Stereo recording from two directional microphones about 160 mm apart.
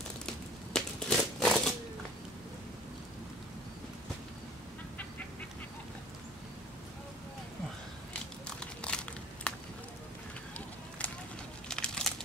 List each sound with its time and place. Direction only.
0.7 s crumpling: 5° left (ahead or behind)
8.5 s crumpling: 5° left (ahead or behind)
11.0 s a sound: 10° left (ahead or behind)
11.7 s crumpling: 5° left (ahead or behind)